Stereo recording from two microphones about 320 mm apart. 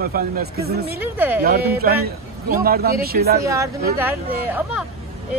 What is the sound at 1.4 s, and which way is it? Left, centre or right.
Speech, right.